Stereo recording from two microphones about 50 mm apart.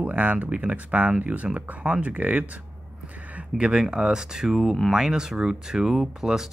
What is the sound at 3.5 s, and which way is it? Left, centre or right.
Speech, centre.